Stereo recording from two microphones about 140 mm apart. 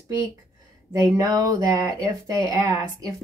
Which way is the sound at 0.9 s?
25° right (ahead or behind).